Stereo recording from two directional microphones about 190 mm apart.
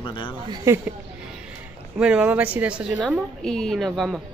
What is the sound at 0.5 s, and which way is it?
Speech, 15° right (ahead or behind).